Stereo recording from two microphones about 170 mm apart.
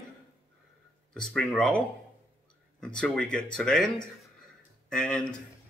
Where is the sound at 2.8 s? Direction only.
5° left (ahead or behind).